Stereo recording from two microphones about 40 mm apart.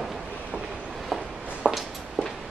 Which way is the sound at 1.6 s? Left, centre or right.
Left.